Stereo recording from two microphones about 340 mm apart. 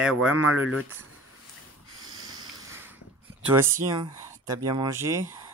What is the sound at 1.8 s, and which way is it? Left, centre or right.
Snort, right.